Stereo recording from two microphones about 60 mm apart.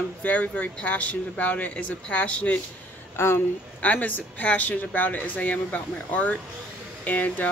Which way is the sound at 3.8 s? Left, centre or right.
Left.